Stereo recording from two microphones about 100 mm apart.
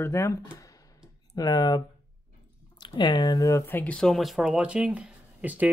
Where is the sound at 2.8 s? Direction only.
45° left (ahead or behind).